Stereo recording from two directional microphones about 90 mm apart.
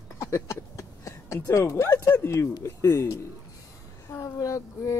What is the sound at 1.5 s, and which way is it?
A man's voice, 30° left (ahead or behind).